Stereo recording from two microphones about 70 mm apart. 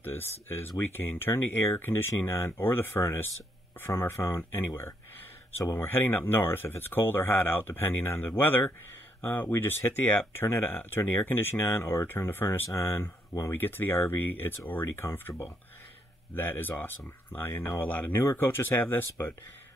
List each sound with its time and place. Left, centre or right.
0.0 s speech: left